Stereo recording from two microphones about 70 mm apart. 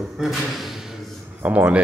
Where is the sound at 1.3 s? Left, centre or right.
Right.